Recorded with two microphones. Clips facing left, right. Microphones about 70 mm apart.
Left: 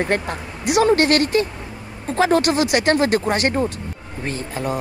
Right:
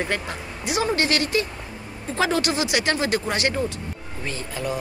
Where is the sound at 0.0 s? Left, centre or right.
Left.